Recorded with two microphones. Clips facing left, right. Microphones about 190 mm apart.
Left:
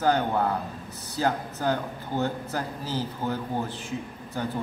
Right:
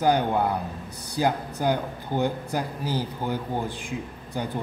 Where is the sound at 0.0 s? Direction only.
15° right (ahead or behind).